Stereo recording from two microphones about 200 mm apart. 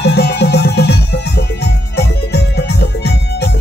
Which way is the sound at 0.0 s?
55° left (ahead or behind).